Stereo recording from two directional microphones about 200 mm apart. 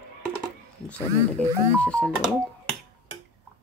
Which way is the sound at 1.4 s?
5° left (ahead or behind).